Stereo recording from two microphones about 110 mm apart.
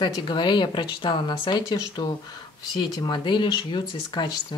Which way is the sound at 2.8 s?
40° left (ahead or behind).